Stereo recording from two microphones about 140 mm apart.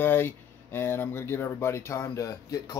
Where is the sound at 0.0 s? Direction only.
15° left (ahead or behind).